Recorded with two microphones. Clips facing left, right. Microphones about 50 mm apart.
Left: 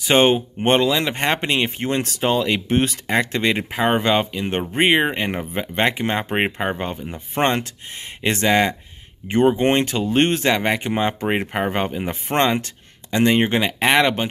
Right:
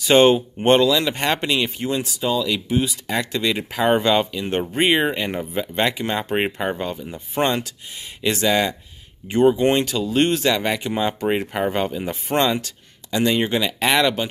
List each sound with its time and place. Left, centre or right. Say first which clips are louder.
0.0 s speech: right 2 dB; left
3.1 s speech: left 3 dB; left